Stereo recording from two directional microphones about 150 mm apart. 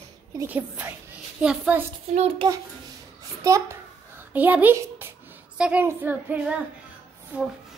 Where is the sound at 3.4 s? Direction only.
20° right (ahead or behind).